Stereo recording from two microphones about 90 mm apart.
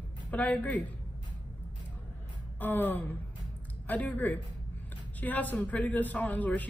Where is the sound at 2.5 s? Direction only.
20° left (ahead or behind).